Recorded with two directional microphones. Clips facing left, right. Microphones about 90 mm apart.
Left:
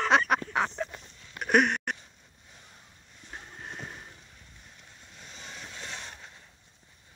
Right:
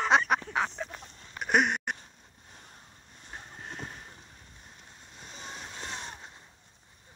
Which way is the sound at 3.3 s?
Centre (ahead or behind).